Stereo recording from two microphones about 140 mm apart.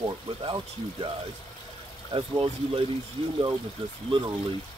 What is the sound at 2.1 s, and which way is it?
Speech, 35° right (ahead or behind).